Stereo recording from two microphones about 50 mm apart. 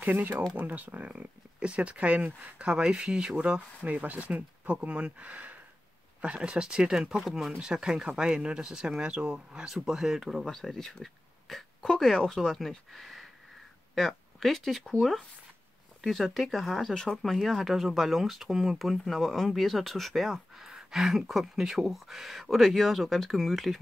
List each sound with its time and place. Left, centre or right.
0.0 s speech: right
1.6 s speech: right
9.8 s speech: centre
10.8 s a sound: centre
11.9 s speech: centre